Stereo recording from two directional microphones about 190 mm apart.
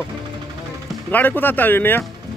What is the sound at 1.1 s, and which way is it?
Speech, 10° left (ahead or behind).